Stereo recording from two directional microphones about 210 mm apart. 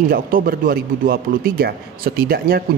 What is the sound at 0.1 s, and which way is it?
A man's voice, 45° right (ahead or behind).